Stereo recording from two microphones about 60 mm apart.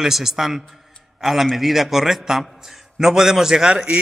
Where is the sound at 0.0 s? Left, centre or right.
Centre.